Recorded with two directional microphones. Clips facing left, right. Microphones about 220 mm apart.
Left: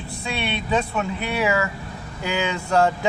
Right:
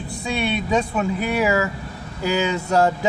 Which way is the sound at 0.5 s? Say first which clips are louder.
Even; 5° right (ahead or behind).